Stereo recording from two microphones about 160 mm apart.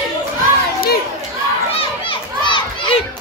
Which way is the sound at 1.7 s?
35° left (ahead or behind).